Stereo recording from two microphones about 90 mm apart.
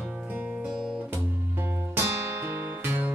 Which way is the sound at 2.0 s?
25° right (ahead or behind).